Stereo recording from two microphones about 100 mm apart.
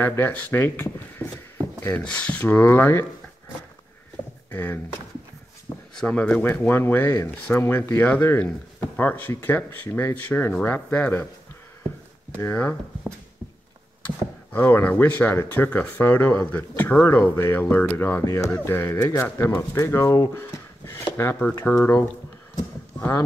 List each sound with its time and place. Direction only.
0.0 s speech: 20° left (ahead or behind)
4.5 s speech: 20° left (ahead or behind)
5.9 s speech: 10° left (ahead or behind)
14.5 s speech: 15° left (ahead or behind)
18.2 s speech: 35° left (ahead or behind)
20.3 s a sound: 25° left (ahead or behind)
21.6 s speech: 15° left (ahead or behind)